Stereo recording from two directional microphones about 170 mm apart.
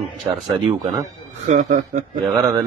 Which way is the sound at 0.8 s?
45° right (ahead or behind).